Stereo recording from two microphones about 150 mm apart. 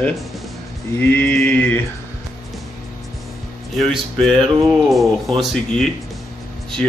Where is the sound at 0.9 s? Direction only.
10° left (ahead or behind).